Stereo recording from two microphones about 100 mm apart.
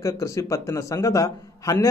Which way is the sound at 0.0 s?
30° left (ahead or behind).